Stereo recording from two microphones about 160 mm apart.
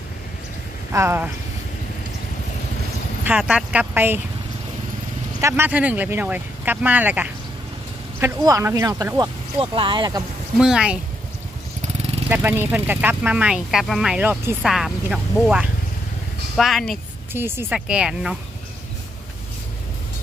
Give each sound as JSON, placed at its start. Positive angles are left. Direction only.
{"t": 0.9, "sound": "speech", "side_deg": -15}
{"t": 3.3, "sound": "speech", "side_deg": -10}
{"t": 5.4, "sound": "speech", "side_deg": -15}
{"t": 8.2, "sound": "speech", "side_deg": -20}
{"t": 9.6, "sound": "speech", "side_deg": -30}
{"t": 10.6, "sound": "speech", "side_deg": -5}
{"t": 12.3, "sound": "speech", "side_deg": -10}
{"t": 17.3, "sound": "speech", "side_deg": -15}